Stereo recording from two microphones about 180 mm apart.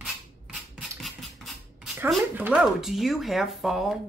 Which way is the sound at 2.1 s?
10° right (ahead or behind).